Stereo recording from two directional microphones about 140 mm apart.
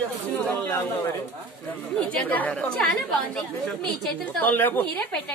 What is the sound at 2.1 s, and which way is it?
Speech, 10° left (ahead or behind).